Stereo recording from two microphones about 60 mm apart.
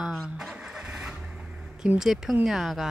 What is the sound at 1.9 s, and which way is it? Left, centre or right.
Speech, centre.